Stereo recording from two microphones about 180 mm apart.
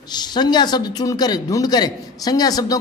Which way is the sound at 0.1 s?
25° left (ahead or behind).